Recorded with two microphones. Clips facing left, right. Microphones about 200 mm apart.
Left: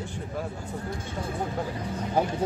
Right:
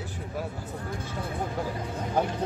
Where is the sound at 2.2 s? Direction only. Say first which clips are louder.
Left 1 dB; 10° left (ahead or behind).